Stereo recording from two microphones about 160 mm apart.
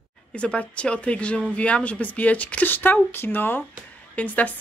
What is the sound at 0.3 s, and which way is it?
A woman's voice, 5° left (ahead or behind).